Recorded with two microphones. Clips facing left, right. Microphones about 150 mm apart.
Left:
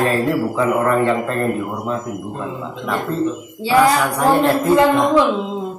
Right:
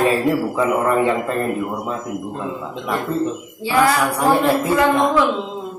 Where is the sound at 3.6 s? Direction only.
30° left (ahead or behind).